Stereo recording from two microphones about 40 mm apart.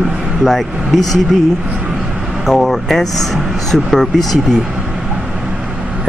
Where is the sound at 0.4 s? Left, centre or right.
Centre.